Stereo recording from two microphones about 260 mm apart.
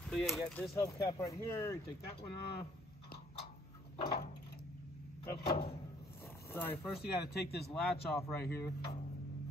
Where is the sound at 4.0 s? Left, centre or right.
Left.